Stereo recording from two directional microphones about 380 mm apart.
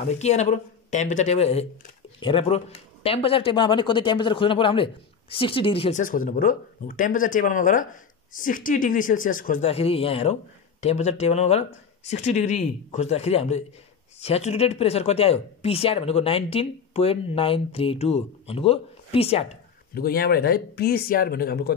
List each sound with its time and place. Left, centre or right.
0.0 s speech: centre